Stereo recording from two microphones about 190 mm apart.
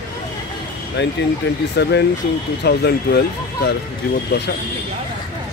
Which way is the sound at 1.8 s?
60° left (ahead or behind).